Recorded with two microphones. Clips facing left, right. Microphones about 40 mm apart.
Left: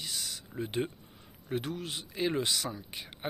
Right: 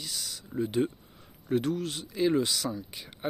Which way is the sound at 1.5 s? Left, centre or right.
Centre.